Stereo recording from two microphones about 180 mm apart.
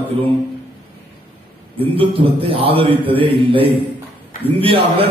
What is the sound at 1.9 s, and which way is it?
A man's voice, 30° right (ahead or behind).